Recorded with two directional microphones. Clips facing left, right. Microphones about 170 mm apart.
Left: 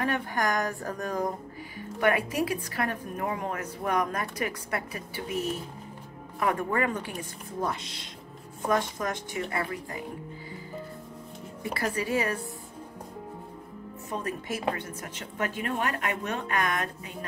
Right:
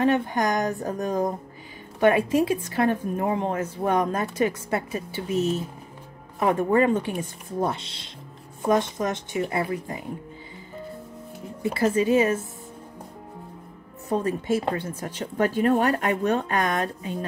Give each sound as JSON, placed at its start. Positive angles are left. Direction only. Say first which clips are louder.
{"t": 0.0, "sound": "a woman's voice", "louder": "right 6 dB", "side_deg": -20}
{"t": 11.6, "sound": "a woman's voice", "louder": "right 9 dB", "side_deg": -25}
{"t": 14.0, "sound": "speech", "louder": "right 9 dB", "side_deg": -30}